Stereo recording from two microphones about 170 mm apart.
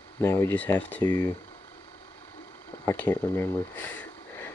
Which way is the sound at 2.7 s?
15° left (ahead or behind).